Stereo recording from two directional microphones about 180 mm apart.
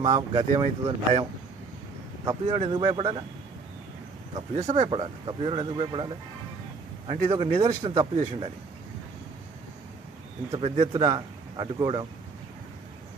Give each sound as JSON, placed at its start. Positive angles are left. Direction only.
{"t": 0.1, "sound": "a man's voice", "side_deg": -25}
{"t": 2.2, "sound": "a man's voice", "side_deg": -25}
{"t": 4.8, "sound": "a man's voice", "side_deg": -30}
{"t": 10.5, "sound": "speech", "side_deg": -30}